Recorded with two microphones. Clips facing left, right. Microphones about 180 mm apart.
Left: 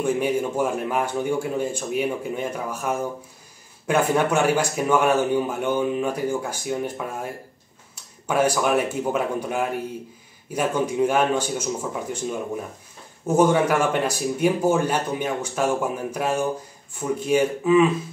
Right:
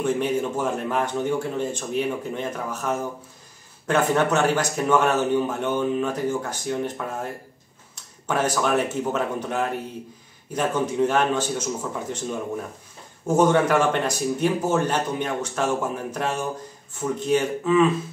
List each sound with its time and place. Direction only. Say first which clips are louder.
0.0 s speech: left 1 dB; 10° left (ahead or behind)
8.3 s speech: left 2 dB; 10° left (ahead or behind)